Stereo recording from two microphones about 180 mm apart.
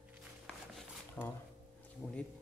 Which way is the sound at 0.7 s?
10° left (ahead or behind).